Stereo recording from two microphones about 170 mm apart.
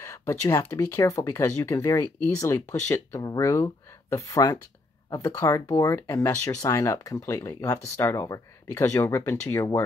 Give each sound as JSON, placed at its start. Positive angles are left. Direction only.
{"t": 0.0, "sound": "speech", "side_deg": 15}